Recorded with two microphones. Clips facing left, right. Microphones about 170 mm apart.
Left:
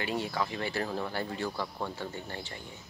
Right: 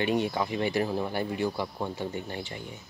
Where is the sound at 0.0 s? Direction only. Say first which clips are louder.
Right 5 dB; 20° right (ahead or behind).